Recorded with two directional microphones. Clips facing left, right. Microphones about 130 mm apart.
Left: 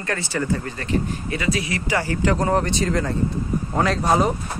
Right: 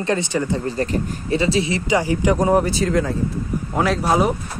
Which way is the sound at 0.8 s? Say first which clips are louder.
Right 2 dB; 35° right (ahead or behind).